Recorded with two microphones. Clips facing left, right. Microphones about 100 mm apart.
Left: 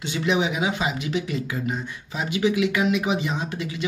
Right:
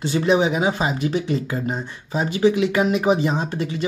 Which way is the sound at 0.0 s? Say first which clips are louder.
Right 5 dB; 35° right (ahead or behind).